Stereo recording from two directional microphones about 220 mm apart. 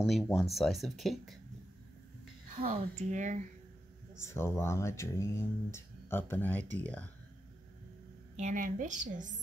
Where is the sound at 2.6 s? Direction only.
35° right (ahead or behind).